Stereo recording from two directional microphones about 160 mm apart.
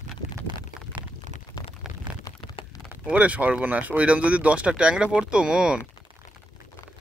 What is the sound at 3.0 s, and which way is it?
Speech, 10° right (ahead or behind).